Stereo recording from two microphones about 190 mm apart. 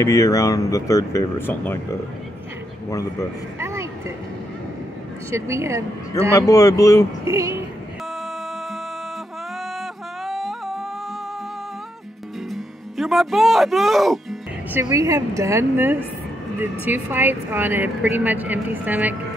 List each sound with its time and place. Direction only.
0.0 s speech: 15° left (ahead or behind)
3.5 s a sound: 15° right (ahead or behind)
5.3 s a woman's voice: 15° right (ahead or behind)
6.3 s speech: 15° left (ahead or behind)
7.2 s speech: 15° right (ahead or behind)
10.2 s music: centre (ahead or behind)
12.4 s music: centre (ahead or behind)
14.7 s a woman's voice: 15° right (ahead or behind)